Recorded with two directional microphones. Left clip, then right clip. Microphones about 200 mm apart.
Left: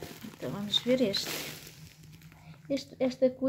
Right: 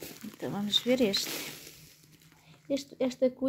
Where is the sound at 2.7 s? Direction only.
45° right (ahead or behind).